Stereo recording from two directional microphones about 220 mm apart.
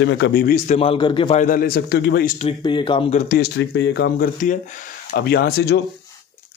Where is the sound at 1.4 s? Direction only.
40° left (ahead or behind).